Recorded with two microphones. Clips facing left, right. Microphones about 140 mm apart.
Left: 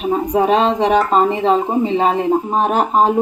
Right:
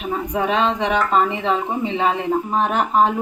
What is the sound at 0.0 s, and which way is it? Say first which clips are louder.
Speech: left 6 dB; 35° left (ahead or behind).